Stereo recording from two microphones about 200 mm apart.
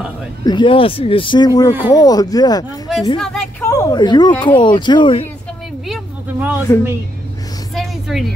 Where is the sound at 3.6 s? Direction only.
15° left (ahead or behind).